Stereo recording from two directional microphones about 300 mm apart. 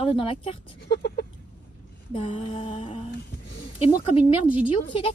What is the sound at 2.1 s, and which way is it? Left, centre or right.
Mantra, centre.